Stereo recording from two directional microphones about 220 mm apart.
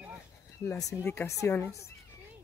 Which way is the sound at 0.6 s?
15° left (ahead or behind).